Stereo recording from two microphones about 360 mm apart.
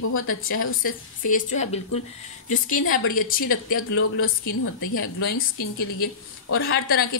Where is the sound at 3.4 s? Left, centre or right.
Left.